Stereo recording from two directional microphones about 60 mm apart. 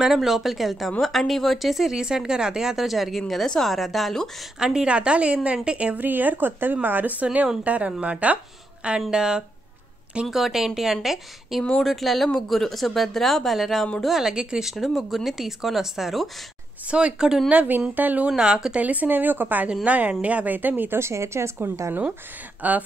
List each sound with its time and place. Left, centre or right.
0.0 s speech: centre
4.6 s a woman's voice: centre
5.9 s a woman's voice: right; by 16.3 s centre
16.8 s speech: centre
17.9 s a woman's voice: right
18.3 s a woman's voice: centre; by 21.0 s right
21.0 s a woman's voice: right
22.6 s a woman's voice: right